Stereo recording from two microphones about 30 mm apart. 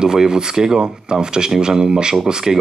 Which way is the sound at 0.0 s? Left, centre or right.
Right.